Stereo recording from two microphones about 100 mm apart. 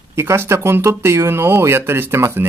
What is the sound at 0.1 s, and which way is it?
Speech, 25° right (ahead or behind).